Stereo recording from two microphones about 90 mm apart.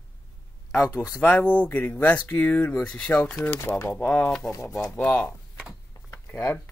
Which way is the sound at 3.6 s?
25° left (ahead or behind).